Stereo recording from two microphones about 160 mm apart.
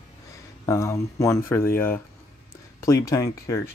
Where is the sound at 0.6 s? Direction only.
20° left (ahead or behind).